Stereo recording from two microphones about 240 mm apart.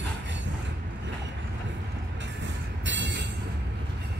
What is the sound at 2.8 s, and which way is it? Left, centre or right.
Train, right.